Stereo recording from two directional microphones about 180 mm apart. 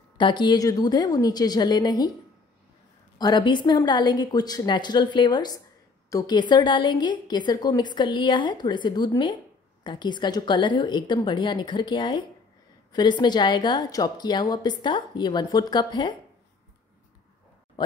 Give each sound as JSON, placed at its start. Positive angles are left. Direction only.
{"t": 0.2, "sound": "a woman's voice", "side_deg": 25}
{"t": 3.2, "sound": "a woman's voice", "side_deg": 25}